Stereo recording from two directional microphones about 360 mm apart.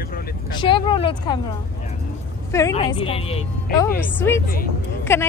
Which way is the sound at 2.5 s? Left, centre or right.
Centre.